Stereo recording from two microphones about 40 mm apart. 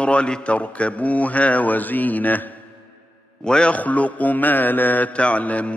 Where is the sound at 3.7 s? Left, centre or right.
Left.